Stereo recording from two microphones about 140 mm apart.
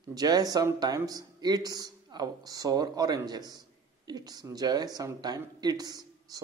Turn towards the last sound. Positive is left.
turn(degrees=-30)  # may be behind; listen again after turning